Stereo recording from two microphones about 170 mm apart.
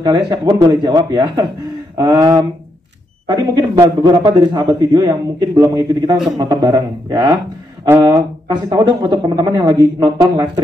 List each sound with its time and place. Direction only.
0.0 s speech: 25° right (ahead or behind)